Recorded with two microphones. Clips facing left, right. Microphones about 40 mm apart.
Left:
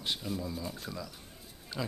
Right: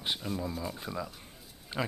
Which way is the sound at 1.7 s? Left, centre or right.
Right.